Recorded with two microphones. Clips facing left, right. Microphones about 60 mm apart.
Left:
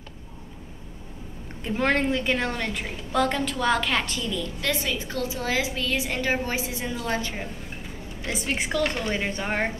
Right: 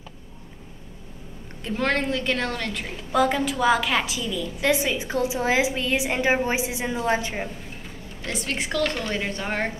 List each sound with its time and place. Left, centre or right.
1.6 s a woman's voice: centre
4.6 s a woman's voice: centre
8.2 s a woman's voice: centre